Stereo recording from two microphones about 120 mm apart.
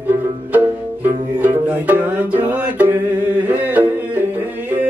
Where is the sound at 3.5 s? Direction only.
15° right (ahead or behind).